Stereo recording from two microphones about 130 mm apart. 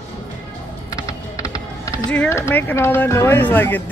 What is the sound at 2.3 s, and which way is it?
Speech, 20° left (ahead or behind).